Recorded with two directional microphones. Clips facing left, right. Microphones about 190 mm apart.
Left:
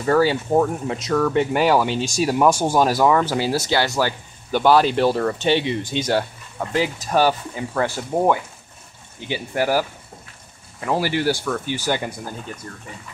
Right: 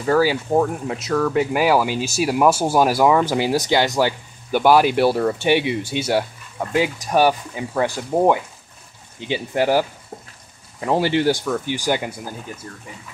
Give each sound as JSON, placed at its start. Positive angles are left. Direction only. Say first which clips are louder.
{"t": 0.0, "sound": "speech", "louder": "even", "side_deg": -5}